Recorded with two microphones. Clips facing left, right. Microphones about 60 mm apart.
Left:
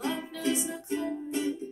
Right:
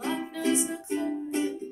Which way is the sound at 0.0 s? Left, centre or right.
Right.